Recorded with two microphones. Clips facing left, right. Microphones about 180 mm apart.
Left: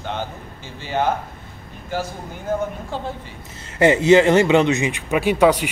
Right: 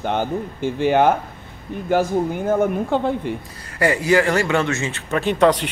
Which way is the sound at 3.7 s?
20° left (ahead or behind).